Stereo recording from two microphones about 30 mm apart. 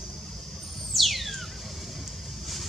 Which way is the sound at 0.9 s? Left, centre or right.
Centre.